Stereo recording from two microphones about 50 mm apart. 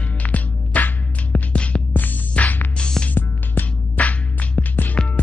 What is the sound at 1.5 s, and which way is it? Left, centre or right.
Music, left.